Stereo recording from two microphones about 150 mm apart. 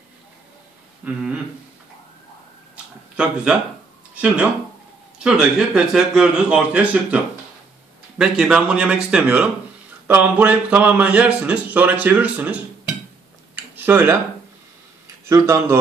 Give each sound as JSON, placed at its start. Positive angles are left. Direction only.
{"t": 1.0, "sound": "speech", "side_deg": -5}
{"t": 2.7, "sound": "a sound", "side_deg": -5}
{"t": 4.1, "sound": "speech", "side_deg": -10}
{"t": 8.2, "sound": "speech", "side_deg": -5}
{"t": 13.7, "sound": "speech", "side_deg": -15}
{"t": 15.2, "sound": "speech", "side_deg": -20}